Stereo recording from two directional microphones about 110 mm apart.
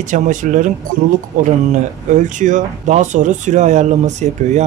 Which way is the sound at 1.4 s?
90° right.